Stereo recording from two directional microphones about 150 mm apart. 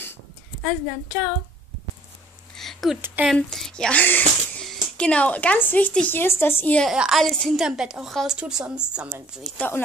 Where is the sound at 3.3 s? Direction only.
Centre (ahead or behind).